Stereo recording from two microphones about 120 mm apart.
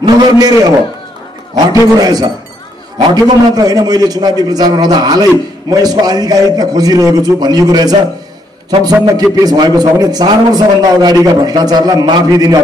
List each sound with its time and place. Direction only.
0.0 s a man's voice: 30° right (ahead or behind)
2.0 s a man's voice: 35° right (ahead or behind)